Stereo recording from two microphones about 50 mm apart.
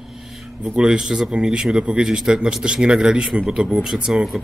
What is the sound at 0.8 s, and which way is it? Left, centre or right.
Speech, centre.